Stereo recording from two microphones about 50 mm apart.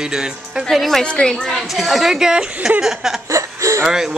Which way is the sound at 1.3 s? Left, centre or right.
Centre.